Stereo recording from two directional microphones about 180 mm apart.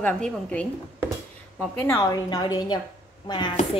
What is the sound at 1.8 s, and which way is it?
A woman's voice, 15° left (ahead or behind).